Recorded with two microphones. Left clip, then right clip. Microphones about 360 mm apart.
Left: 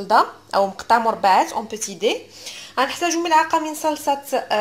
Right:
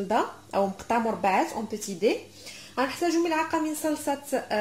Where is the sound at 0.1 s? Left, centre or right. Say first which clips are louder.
Left 10 dB; left.